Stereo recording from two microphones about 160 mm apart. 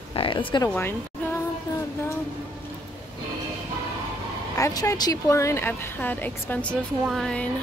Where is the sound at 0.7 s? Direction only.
15° left (ahead or behind).